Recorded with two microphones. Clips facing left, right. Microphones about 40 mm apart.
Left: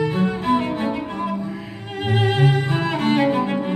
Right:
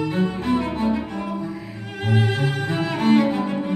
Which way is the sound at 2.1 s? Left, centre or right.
Left.